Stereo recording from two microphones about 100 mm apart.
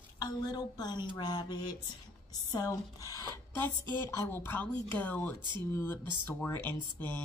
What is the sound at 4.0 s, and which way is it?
Speech, 25° left (ahead or behind).